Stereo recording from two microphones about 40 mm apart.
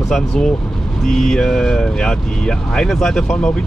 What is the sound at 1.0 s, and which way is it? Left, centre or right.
Speech, centre.